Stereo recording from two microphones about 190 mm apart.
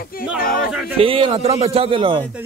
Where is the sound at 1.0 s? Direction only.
30° right (ahead or behind).